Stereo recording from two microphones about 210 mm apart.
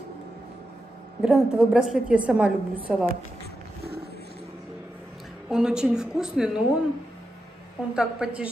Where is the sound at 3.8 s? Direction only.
50° right (ahead or behind).